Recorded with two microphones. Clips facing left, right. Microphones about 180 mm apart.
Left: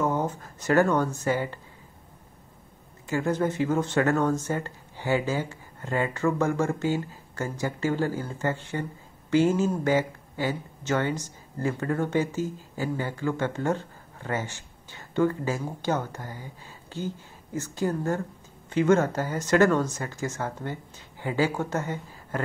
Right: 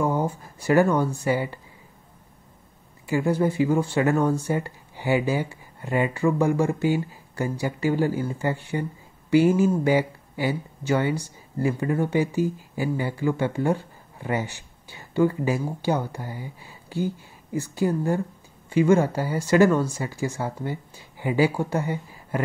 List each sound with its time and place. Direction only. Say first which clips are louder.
0.0 s speech: right 2 dB; 10° right (ahead or behind)
3.1 s speech: right 3 dB; 10° right (ahead or behind)